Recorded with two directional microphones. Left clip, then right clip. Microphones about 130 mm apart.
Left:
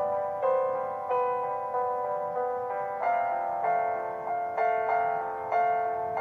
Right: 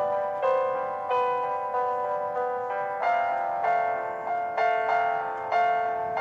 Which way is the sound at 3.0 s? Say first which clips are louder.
Right 2 dB; 30° right (ahead or behind).